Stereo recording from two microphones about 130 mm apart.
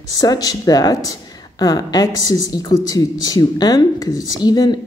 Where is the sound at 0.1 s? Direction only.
30° left (ahead or behind).